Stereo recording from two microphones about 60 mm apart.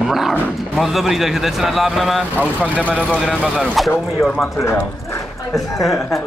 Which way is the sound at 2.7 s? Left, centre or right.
Centre.